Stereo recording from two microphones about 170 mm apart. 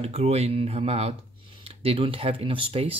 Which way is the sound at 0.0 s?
35° right (ahead or behind).